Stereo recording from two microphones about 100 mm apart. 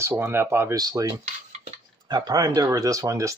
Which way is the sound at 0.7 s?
40° right (ahead or behind).